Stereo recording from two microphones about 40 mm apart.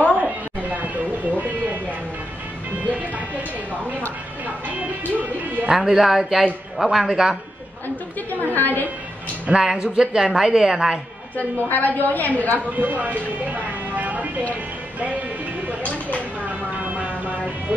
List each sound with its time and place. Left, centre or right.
0.2 s a sound: right
2.8 s speech: right
4.6 s speech: right
5.7 s a woman's voice: centre
8.5 s a woman's voice: left
9.5 s a woman's voice: centre
11.7 s a woman's voice: left
12.5 s speech: right
16.4 s music: right